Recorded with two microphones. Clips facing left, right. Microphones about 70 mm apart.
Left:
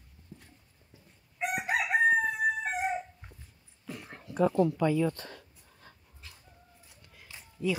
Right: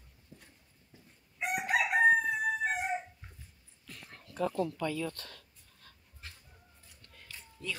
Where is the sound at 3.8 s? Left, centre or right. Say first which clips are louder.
Left 8 dB; left.